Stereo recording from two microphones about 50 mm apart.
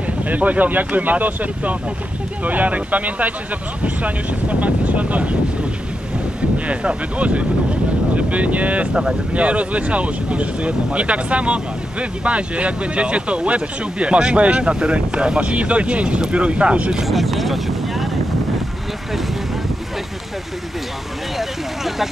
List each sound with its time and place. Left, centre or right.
0.3 s speech: right
6.7 s speech: right
17.0 s speech: centre
21.4 s speech: centre